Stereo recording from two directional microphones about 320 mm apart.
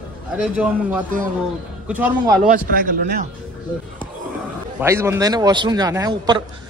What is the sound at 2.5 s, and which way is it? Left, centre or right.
Speech, right.